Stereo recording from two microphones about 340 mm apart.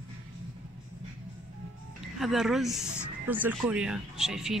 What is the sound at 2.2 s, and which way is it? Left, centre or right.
Speech, centre.